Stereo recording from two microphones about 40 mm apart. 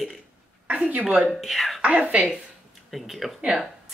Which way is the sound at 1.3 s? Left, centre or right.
Centre.